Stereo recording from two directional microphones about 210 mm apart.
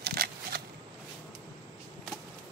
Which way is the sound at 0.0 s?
50° right (ahead or behind).